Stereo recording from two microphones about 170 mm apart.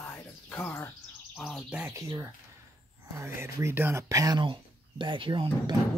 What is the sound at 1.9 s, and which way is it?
Speech, 15° right (ahead or behind).